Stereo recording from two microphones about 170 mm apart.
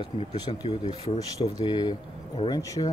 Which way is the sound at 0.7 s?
35° left (ahead or behind).